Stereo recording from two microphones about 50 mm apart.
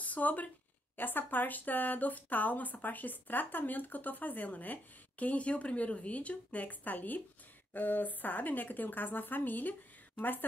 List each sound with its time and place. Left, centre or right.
0.0 s speech: left